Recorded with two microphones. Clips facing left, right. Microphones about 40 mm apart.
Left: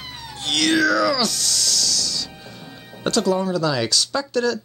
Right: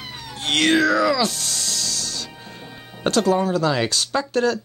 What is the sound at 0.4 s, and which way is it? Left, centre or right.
Speech, right.